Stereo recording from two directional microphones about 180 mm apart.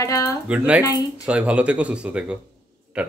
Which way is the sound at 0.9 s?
20° left (ahead or behind).